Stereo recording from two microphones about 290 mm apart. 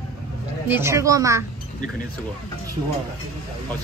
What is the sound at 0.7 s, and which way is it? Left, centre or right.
Speech, centre.